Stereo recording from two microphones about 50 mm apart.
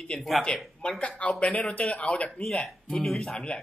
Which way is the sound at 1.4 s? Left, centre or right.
Left.